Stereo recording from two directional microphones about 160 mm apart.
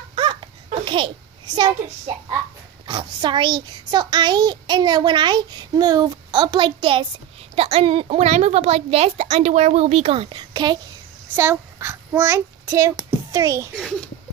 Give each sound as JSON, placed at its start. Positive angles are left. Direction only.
{"t": 0.1, "sound": "a sound", "side_deg": -30}
{"t": 2.9, "sound": "a child's voice", "side_deg": -30}
{"t": 11.3, "sound": "a child's voice", "side_deg": -15}